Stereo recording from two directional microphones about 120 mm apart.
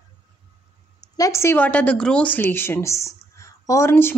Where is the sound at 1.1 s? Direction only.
25° left (ahead or behind).